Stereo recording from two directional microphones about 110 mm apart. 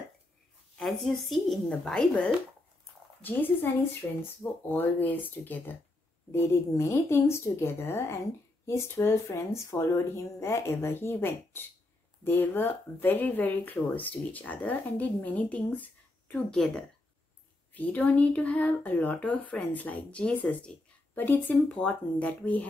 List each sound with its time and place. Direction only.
0.7 s speech: centre (ahead or behind)
17.7 s speech: 15° left (ahead or behind)